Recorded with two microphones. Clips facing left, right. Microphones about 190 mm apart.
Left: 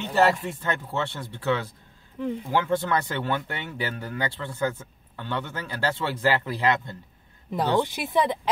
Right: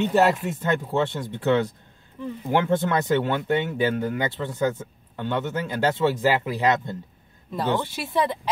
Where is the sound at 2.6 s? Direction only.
20° right (ahead or behind).